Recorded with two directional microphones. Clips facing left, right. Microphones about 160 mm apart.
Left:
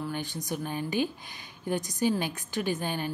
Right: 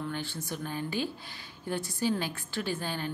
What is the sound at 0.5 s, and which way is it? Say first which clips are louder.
A woman's voice: left 4 dB; 15° left (ahead or behind).